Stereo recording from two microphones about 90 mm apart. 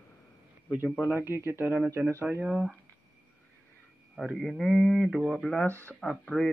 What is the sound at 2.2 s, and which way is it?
Speech, 15° right (ahead or behind).